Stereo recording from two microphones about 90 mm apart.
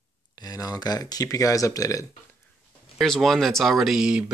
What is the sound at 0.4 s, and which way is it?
Speech, 45° left (ahead or behind).